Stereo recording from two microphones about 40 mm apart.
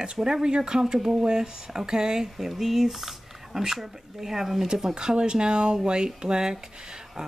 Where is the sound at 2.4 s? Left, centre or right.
Centre.